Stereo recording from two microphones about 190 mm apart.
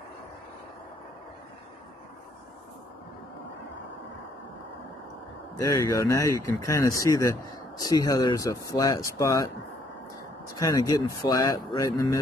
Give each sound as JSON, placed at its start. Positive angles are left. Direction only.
{"t": 5.6, "sound": "speech", "side_deg": 15}
{"t": 10.5, "sound": "speech", "side_deg": 20}